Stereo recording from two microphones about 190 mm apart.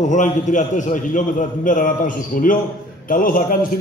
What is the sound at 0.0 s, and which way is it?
A man's voice, 40° left (ahead or behind).